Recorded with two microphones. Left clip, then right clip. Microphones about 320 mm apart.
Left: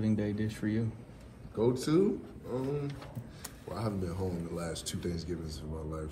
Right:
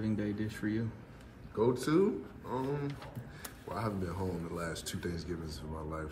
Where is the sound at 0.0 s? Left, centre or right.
Centre.